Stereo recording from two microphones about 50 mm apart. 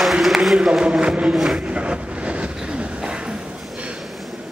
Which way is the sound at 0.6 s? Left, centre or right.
Centre.